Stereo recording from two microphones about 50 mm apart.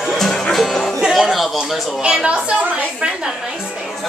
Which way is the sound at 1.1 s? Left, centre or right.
Centre.